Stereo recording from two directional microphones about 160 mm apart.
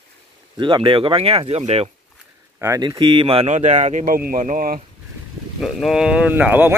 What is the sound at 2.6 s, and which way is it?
Speech, 20° right (ahead or behind).